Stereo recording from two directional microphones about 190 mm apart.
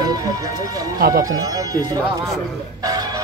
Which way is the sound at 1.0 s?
50° right (ahead or behind).